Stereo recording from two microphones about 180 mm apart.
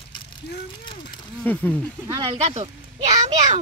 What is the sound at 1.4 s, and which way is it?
Speech, 10° left (ahead or behind).